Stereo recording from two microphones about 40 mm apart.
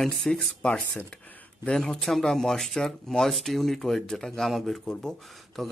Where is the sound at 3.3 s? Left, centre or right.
Centre.